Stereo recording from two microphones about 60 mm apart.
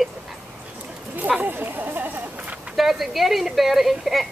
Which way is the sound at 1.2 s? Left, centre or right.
Right.